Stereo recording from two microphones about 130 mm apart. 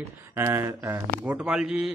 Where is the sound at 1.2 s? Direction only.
10° right (ahead or behind).